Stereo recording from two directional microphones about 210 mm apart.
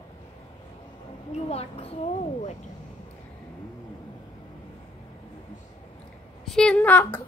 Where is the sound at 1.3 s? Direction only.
30° left (ahead or behind).